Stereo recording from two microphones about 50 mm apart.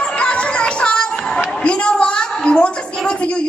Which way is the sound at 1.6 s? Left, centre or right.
Left.